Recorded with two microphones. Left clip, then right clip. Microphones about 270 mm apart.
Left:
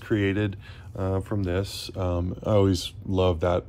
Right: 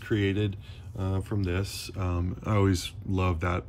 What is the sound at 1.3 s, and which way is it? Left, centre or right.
Speech, left.